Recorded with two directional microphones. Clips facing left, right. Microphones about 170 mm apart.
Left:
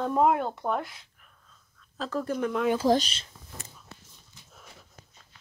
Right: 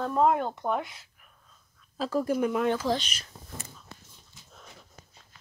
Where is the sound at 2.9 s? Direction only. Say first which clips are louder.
Left 5 dB; 35° left (ahead or behind).